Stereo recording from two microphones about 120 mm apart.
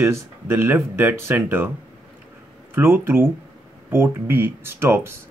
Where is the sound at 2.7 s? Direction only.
15° right (ahead or behind).